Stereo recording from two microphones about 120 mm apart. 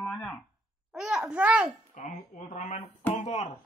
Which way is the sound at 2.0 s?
90° left.